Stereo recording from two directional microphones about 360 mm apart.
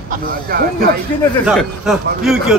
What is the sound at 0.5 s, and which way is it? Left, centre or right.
Speech, right.